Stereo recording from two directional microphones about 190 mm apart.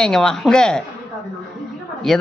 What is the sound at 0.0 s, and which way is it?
Speech, 5° left (ahead or behind).